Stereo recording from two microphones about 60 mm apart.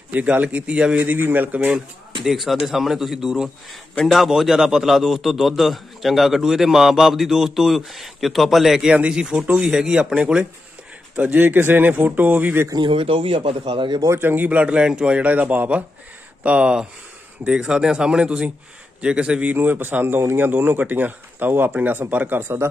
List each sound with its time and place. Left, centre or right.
0.1 s a man's voice: right
1.0 s speech: right
2.2 s a man's voice: centre
8.9 s a man's voice: centre
11.3 s speech: right
14.1 s a man's voice: right
16.4 s a man's voice: centre
19.4 s a man's voice: right
22.4 s speech: right